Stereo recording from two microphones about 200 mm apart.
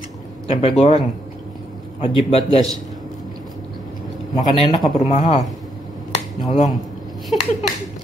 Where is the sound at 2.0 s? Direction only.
25° left (ahead or behind).